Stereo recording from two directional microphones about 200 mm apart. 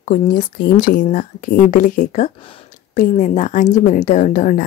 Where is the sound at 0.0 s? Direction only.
40° left (ahead or behind).